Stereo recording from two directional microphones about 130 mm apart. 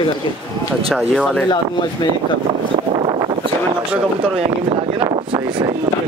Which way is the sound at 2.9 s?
40° right (ahead or behind).